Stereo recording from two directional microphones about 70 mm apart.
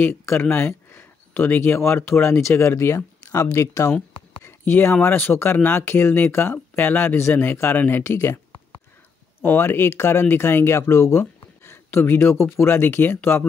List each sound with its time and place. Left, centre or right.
0.1 s speech: left
4.4 s a sound: left
5.0 s speech: left
9.4 s speech: left